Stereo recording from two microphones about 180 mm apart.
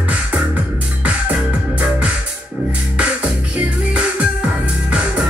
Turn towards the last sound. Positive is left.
turn(degrees=-5)  # may be behind; listen again after turning